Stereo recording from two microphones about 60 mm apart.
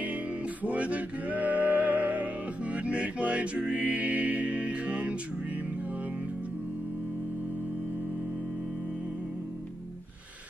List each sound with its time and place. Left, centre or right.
0.7 s music: right